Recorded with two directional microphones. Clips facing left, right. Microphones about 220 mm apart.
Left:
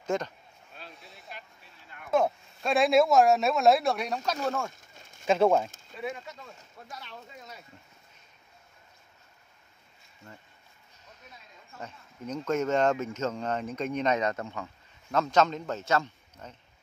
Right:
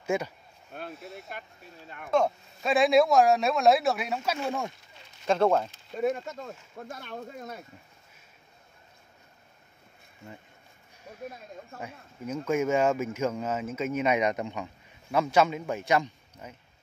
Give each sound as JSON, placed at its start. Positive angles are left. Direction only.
{"t": 0.0, "sound": "speech", "side_deg": -10}
{"t": 0.9, "sound": "vehicle", "side_deg": 0}
{"t": 2.0, "sound": "speech", "side_deg": 5}
{"t": 4.5, "sound": "speech", "side_deg": -15}
{"t": 4.9, "sound": "a sound", "side_deg": 50}
{"t": 5.2, "sound": "speech", "side_deg": 5}
{"t": 5.9, "sound": "speech", "side_deg": -45}
{"t": 11.1, "sound": "a sound", "side_deg": -55}
{"t": 11.8, "sound": "speech", "side_deg": -10}